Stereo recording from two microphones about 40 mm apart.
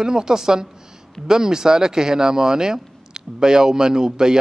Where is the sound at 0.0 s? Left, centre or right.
Centre.